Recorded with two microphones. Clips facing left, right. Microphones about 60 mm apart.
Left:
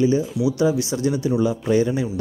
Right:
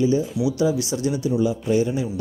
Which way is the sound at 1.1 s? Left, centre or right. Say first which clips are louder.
Left 1 dB; left.